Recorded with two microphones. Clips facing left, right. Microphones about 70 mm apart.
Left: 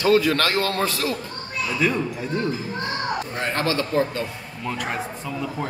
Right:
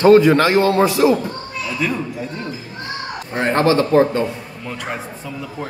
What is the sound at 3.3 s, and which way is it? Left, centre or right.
Speech, right.